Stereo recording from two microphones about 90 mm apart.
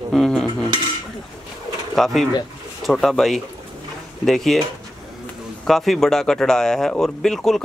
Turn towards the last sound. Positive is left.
turn(degrees=5)  # may be behind; listen again after turning